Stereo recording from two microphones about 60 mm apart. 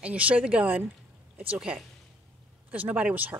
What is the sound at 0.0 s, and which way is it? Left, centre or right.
Speech, right.